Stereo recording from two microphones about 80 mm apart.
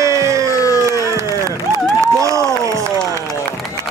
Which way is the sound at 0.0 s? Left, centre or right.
Right.